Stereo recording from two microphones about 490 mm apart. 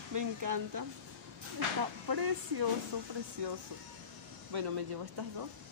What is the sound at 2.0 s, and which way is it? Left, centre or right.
Speech, right.